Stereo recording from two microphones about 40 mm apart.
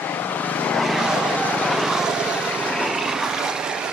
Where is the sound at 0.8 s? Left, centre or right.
Centre.